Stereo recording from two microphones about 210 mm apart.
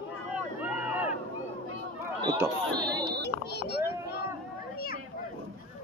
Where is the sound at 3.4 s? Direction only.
50° left (ahead or behind).